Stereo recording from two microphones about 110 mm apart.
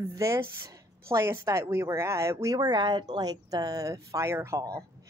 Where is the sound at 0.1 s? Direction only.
25° right (ahead or behind).